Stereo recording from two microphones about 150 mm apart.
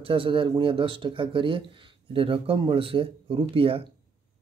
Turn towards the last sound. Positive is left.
turn(degrees=-35)  # may be behind; listen again after turning